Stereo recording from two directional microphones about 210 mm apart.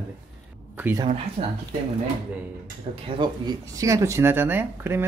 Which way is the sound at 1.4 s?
30° right (ahead or behind).